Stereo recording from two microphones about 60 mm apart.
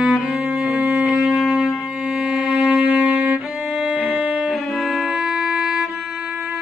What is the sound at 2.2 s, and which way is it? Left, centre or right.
Music, centre.